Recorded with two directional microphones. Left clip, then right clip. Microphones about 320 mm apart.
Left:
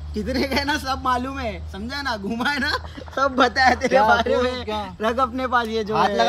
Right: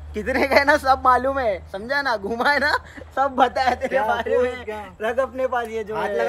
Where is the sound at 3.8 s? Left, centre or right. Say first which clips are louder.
Left 5 dB; left.